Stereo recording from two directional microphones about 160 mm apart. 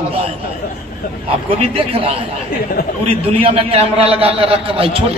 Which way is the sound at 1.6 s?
35° right (ahead or behind).